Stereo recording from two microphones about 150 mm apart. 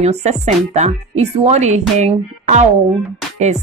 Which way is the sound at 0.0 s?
45° right (ahead or behind).